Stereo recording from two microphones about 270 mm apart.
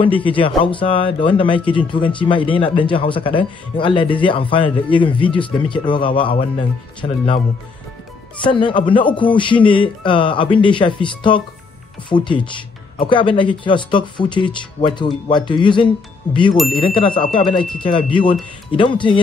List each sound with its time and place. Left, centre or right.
0.4 s speech: centre